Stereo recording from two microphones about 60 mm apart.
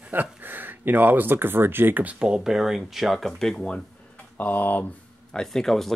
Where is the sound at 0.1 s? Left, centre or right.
Right.